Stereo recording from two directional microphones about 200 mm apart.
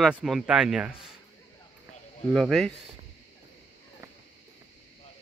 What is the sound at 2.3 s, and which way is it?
Speech, centre (ahead or behind).